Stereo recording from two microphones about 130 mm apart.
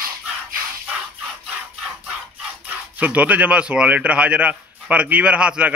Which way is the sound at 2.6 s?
10° right (ahead or behind).